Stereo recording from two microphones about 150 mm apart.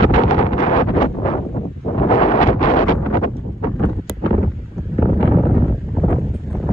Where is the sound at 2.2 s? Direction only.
50° left (ahead or behind).